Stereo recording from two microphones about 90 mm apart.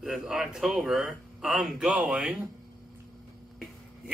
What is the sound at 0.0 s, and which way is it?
Speech, 5° right (ahead or behind).